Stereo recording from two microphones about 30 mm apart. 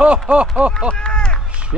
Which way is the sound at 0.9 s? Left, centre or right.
Left.